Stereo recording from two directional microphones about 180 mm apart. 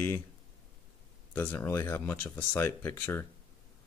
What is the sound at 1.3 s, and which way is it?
Speech, 10° left (ahead or behind).